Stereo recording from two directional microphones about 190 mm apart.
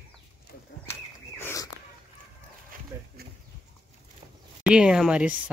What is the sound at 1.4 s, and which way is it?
Dog, 15° left (ahead or behind).